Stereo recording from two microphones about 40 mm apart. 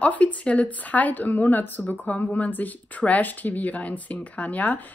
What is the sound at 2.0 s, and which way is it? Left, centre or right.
Speech, left.